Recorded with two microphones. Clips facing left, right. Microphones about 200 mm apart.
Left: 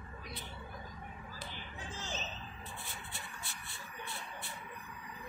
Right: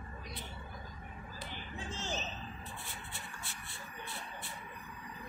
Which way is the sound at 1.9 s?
25° right (ahead or behind).